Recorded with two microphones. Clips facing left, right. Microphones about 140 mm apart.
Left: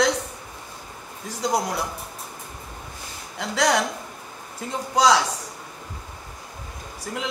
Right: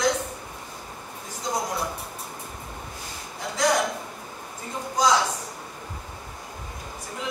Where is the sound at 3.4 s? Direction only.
75° left (ahead or behind).